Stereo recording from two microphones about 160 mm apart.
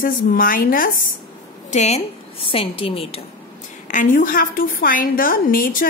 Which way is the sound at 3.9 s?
55° left (ahead or behind).